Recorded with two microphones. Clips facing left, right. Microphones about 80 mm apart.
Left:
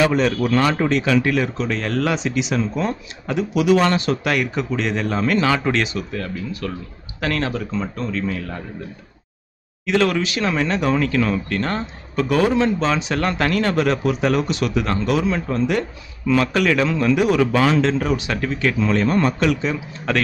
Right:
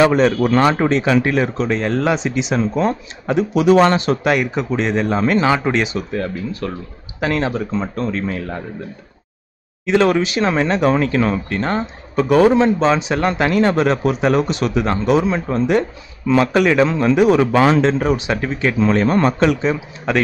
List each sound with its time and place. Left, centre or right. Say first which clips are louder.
0.0 s speech: right 4 dB; right; by 5.9 s centre
5.9 s speech: right 4 dB; right
7.2 s speech: right 4 dB; centre
7.5 s speech: right 3 dB; right
9.8 s speech: right 4 dB; right
19.6 s speech: right 4 dB; right